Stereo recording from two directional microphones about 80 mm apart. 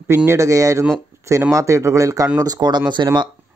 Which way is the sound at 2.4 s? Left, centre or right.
Right.